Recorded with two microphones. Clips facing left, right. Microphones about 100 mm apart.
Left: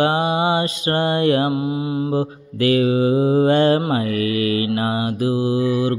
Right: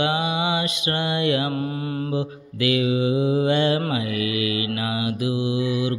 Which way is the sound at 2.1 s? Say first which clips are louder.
Left 5 dB; 40° left (ahead or behind).